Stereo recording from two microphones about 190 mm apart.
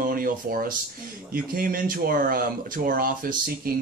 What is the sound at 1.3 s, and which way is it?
Speech, 45° right (ahead or behind).